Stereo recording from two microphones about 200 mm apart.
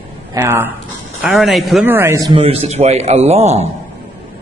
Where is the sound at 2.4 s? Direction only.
30° right (ahead or behind).